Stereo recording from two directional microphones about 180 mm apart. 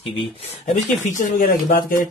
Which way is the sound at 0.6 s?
40° left (ahead or behind).